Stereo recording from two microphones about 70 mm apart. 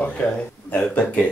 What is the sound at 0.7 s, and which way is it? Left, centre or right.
Speech, left.